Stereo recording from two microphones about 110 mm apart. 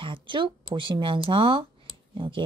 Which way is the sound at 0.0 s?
50° right (ahead or behind).